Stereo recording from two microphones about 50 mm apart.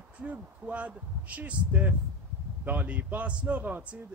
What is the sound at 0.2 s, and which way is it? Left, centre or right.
A man's voice, right.